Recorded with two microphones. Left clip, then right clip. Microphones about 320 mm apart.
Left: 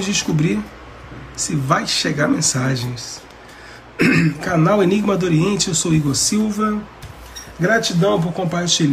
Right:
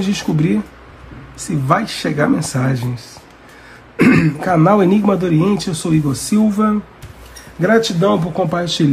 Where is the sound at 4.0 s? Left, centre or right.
Centre.